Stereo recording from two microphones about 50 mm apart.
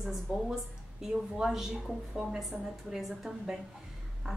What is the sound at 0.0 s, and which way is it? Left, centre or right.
A woman's voice, centre.